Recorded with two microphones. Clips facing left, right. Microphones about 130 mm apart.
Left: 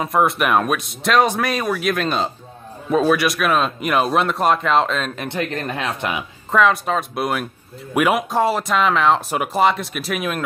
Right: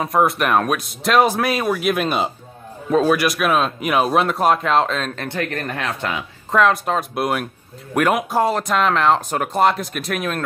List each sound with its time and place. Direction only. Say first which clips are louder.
0.0 s speech: even; centre (ahead or behind)
5.1 s speech: even; 15° left (ahead or behind)
6.5 s speech: even; centre (ahead or behind)